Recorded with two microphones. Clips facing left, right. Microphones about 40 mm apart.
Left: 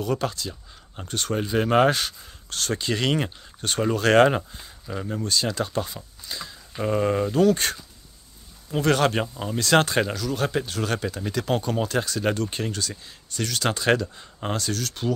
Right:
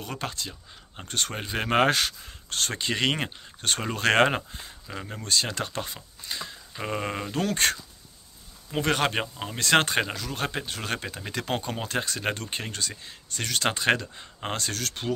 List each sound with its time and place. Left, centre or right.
0.0 s speech: right
1.0 s speech: right
1.3 s speech: right
2.5 s speech: right
4.4 s speech: centre
5.2 s speech: right
6.2 s speech: right
7.3 s speech: right
8.7 s speech: right
9.6 s speech: right